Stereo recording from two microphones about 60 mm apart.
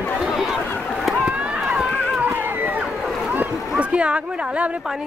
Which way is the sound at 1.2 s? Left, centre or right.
Centre.